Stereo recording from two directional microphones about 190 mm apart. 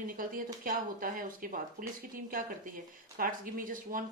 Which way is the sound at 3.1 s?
45° right (ahead or behind).